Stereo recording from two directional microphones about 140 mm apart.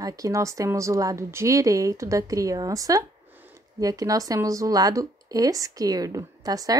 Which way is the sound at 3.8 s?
25° right (ahead or behind).